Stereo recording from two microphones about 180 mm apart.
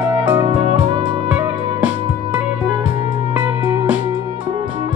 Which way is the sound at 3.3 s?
10° right (ahead or behind).